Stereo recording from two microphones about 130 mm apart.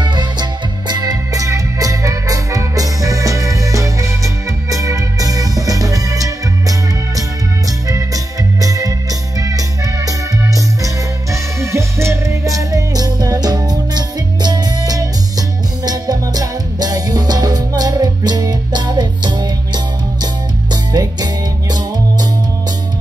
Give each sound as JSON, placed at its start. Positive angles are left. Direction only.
{"t": 0.0, "sound": "music", "side_deg": -35}
{"t": 7.9, "sound": "music", "side_deg": -25}